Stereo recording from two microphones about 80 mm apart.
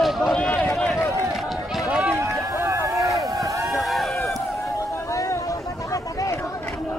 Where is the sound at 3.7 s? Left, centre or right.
Centre.